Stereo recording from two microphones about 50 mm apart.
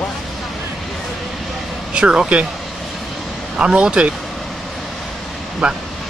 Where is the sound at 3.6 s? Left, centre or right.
Right.